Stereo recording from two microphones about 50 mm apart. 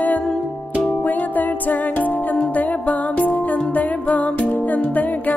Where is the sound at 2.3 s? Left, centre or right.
Left.